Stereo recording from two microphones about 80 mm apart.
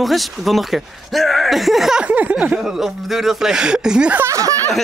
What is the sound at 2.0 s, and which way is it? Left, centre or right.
Speech, centre.